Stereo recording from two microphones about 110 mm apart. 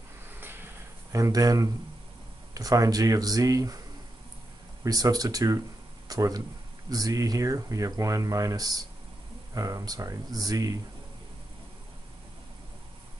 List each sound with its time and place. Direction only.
1.1 s speech: 30° right (ahead or behind)
4.8 s speech: 35° right (ahead or behind)